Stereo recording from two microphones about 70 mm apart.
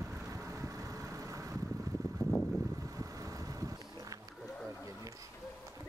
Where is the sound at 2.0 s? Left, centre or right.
Right.